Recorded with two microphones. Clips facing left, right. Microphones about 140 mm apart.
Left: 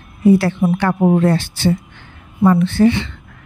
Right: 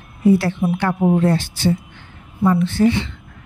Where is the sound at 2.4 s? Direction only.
65° left (ahead or behind).